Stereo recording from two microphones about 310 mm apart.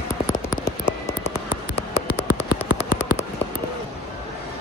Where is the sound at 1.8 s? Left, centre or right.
Centre.